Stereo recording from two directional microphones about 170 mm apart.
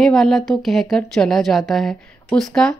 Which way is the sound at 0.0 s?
5° left (ahead or behind).